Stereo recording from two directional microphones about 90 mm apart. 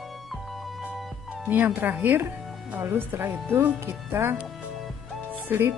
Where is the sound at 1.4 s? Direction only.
20° right (ahead or behind).